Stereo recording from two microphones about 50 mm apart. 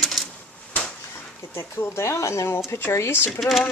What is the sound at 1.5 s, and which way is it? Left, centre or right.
Speech, left.